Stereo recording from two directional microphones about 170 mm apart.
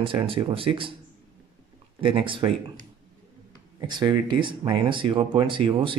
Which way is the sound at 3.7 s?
25° right (ahead or behind).